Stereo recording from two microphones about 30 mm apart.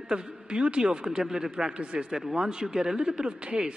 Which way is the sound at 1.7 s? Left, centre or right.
Right.